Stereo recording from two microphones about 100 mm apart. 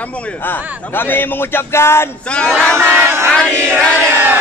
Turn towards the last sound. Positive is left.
turn(degrees=-20)  # may be behind; listen again after turning